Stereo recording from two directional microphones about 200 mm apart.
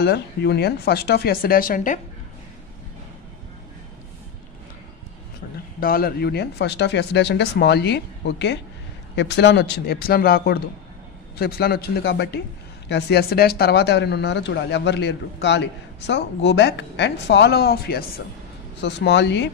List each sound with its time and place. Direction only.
0.0 s speech: 55° left (ahead or behind)
5.8 s speech: 50° left (ahead or behind)